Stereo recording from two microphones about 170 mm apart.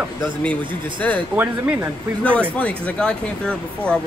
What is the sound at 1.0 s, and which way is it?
Speech, 5° left (ahead or behind).